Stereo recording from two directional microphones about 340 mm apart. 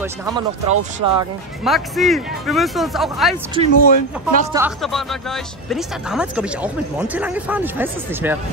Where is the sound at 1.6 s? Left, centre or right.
Centre.